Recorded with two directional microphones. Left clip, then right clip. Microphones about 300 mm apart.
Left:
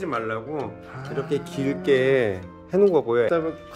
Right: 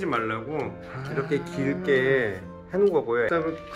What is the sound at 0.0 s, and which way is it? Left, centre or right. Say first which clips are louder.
Speech: even; centre.